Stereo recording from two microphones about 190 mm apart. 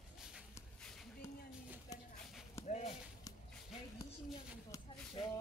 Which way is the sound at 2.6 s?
35° left (ahead or behind).